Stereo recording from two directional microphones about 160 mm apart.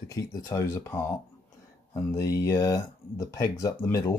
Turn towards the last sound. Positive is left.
turn(degrees=20)  # may be behind; listen again after turning